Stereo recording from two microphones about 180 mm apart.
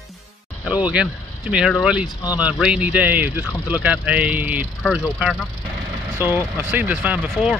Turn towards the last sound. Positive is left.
turn(degrees=-5)  # may be behind; listen again after turning